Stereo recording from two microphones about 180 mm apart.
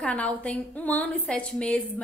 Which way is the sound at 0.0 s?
5° left (ahead or behind).